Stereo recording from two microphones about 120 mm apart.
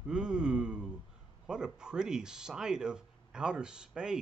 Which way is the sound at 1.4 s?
5° right (ahead or behind).